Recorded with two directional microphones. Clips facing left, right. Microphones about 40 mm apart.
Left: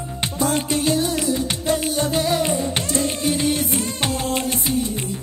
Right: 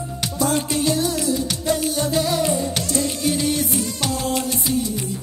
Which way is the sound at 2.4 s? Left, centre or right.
Left.